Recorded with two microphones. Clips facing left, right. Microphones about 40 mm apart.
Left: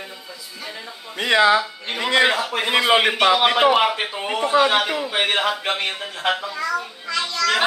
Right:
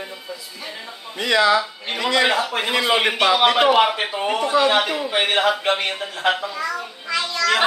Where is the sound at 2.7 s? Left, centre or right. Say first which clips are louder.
Left 3 dB; left.